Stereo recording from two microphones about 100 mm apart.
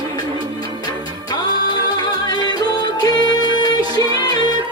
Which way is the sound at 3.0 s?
40° left (ahead or behind).